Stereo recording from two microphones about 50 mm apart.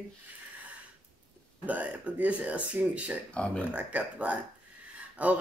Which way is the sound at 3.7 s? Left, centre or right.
Right.